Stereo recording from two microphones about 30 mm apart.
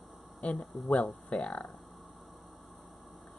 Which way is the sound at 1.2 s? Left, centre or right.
Left.